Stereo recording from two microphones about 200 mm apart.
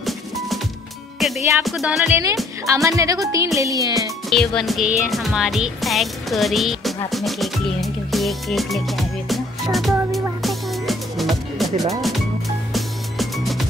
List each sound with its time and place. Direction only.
1.2 s music: centre (ahead or behind)
1.6 s speech: centre (ahead or behind); by 4.1 s 15° right (ahead or behind)
4.3 s speech: centre (ahead or behind)
7.1 s music: centre (ahead or behind)
11.9 s speech: centre (ahead or behind)
12.7 s music: centre (ahead or behind)